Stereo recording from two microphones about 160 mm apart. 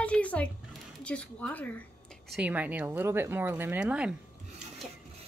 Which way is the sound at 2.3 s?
10° right (ahead or behind).